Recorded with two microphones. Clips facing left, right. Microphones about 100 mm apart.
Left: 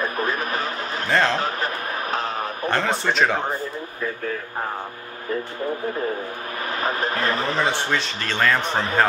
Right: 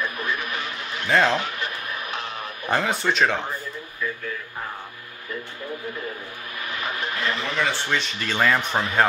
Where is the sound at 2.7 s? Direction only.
5° right (ahead or behind).